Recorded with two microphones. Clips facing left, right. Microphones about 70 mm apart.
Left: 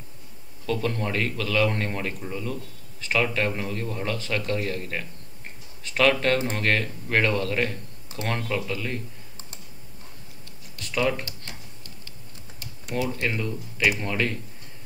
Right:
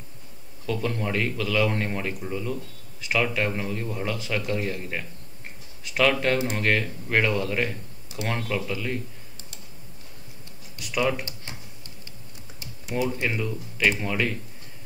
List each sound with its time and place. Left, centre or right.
0.7 s a man's voice: centre
10.8 s speech: centre
13.0 s a man's voice: centre